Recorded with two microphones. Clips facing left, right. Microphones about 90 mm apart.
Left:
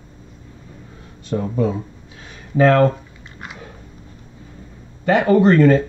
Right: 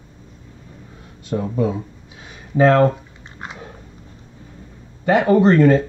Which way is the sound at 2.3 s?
20° right (ahead or behind).